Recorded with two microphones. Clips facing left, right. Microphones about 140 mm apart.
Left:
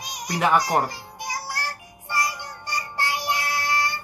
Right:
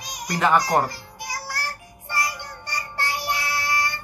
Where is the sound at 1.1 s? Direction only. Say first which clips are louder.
Left 1 dB; 20° left (ahead or behind).